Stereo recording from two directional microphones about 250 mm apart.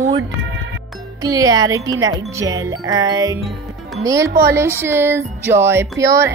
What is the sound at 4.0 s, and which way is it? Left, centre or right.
Speech, centre.